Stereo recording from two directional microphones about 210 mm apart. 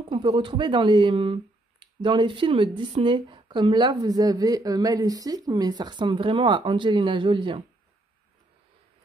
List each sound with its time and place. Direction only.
0.1 s speech: 20° right (ahead or behind)